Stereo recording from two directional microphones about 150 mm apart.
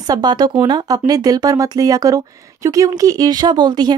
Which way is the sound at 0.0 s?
25° right (ahead or behind).